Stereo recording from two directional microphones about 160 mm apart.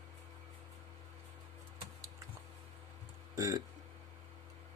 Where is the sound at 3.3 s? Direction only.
20° right (ahead or behind).